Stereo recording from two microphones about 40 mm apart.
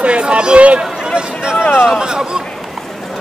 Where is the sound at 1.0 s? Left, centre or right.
Centre.